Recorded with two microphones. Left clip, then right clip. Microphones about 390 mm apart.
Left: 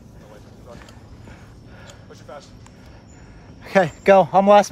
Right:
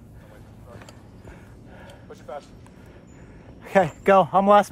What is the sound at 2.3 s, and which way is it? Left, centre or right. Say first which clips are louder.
Music: right 2 dB; right.